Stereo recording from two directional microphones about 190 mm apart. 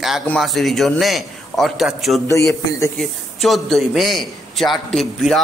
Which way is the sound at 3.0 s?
Centre (ahead or behind).